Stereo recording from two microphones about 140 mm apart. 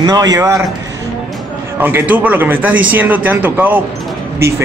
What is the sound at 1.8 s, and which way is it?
Speech, 15° right (ahead or behind).